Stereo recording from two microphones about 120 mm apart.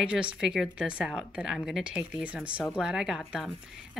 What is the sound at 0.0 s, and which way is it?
Speech, 10° right (ahead or behind).